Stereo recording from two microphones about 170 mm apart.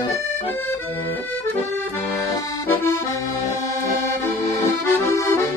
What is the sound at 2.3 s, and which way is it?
Accordion, 15° left (ahead or behind).